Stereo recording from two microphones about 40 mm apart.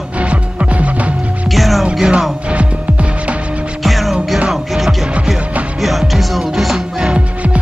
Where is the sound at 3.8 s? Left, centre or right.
Centre.